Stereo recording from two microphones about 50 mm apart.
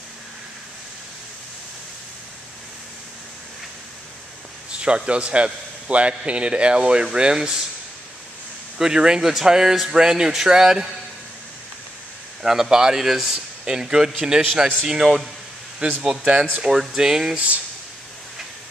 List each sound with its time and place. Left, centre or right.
4.6 s a man's voice: right
8.7 s speech: centre
12.4 s a man's voice: centre